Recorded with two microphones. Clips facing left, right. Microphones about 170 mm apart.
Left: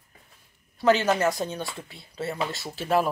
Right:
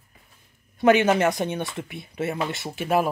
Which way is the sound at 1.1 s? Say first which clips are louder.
Right 3 dB; 20° right (ahead or behind).